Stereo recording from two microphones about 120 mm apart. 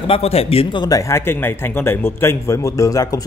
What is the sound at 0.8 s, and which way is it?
Speech, 30° left (ahead or behind).